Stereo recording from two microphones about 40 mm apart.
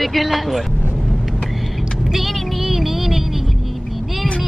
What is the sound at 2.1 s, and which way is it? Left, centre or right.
Child singing, centre.